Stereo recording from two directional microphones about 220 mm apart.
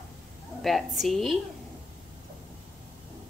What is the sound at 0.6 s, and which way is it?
Speech, centre (ahead or behind).